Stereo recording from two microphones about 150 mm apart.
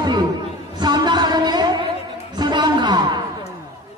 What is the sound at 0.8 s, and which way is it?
Music, 30° right (ahead or behind).